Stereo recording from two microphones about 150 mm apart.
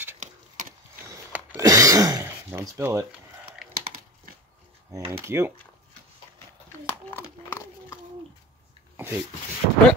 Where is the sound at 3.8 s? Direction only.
75° right (ahead or behind).